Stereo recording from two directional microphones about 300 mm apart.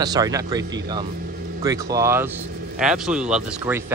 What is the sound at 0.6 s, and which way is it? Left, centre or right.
Speech, right.